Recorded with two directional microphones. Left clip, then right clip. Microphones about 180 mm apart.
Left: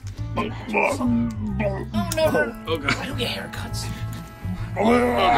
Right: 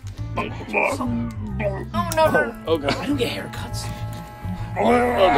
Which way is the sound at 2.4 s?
10° right (ahead or behind).